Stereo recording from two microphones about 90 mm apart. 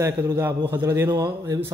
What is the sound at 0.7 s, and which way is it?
Speech, 25° right (ahead or behind).